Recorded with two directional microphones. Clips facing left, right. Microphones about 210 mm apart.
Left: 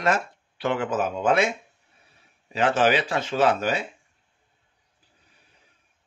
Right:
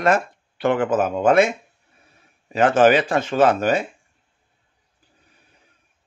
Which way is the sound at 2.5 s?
50° right (ahead or behind).